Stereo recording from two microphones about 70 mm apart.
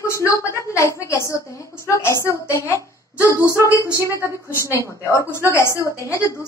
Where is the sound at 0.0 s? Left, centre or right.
Left.